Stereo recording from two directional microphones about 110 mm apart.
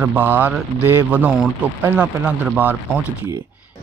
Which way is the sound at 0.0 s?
15° right (ahead or behind).